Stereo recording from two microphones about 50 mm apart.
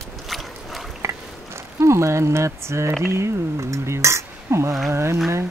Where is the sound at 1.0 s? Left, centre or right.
Right.